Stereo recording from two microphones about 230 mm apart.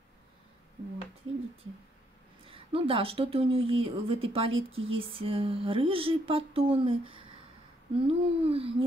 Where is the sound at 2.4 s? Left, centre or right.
Right.